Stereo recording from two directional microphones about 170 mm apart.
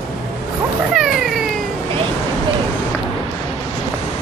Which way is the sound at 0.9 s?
Centre (ahead or behind).